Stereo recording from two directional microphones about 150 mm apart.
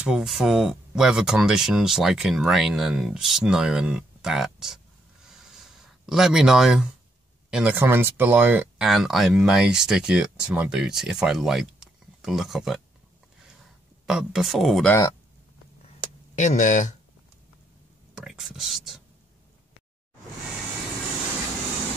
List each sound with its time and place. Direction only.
0.0 s speech: 5° right (ahead or behind)
5.2 s a sound: centre (ahead or behind)
7.5 s speech: 10° right (ahead or behind)
14.0 s speech: 5° right (ahead or behind)
14.9 s speech: 20° left (ahead or behind)
16.3 s speech: 55° left (ahead or behind)
18.1 s speech: centre (ahead or behind)